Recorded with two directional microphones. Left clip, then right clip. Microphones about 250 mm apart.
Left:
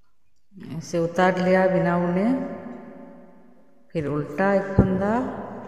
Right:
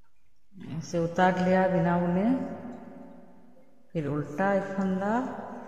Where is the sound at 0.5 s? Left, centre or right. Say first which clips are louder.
Left 5 dB; left.